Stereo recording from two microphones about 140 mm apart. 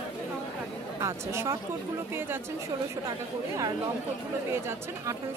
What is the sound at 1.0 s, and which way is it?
Speech, 20° right (ahead or behind).